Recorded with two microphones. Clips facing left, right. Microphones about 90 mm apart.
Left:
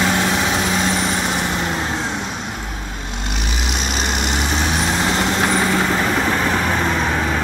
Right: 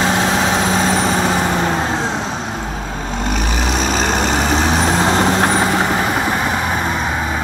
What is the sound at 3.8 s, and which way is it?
Vehicle, 35° right (ahead or behind).